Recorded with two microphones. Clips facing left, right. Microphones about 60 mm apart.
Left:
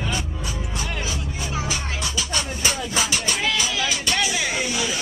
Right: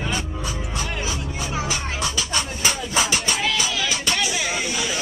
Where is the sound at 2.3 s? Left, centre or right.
Centre.